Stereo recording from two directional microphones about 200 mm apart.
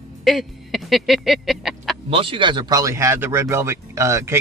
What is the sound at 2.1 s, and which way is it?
Speech, 25° right (ahead or behind).